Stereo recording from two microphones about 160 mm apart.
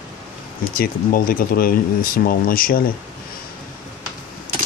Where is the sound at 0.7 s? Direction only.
65° left (ahead or behind).